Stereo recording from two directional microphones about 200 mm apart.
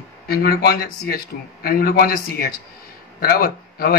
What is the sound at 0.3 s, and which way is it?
A man's voice, 50° left (ahead or behind).